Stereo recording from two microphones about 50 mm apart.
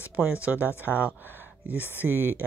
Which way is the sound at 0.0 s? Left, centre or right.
Right.